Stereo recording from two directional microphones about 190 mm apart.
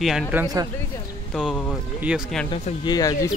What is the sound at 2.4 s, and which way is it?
Speech, 25° left (ahead or behind).